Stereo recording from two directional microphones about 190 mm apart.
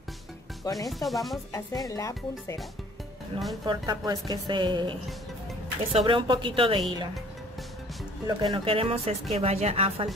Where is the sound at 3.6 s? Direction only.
20° right (ahead or behind).